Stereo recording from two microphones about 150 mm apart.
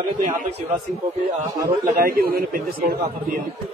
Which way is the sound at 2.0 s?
80° right.